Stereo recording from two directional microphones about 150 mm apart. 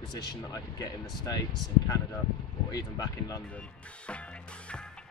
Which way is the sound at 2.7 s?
25° left (ahead or behind).